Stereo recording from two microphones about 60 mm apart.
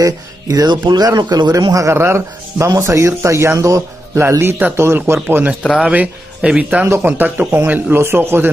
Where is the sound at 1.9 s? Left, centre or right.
Right.